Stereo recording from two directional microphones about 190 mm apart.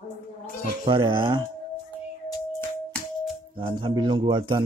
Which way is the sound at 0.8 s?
25° right (ahead or behind).